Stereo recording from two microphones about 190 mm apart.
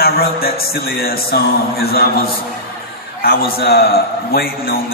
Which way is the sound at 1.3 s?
55° left (ahead or behind).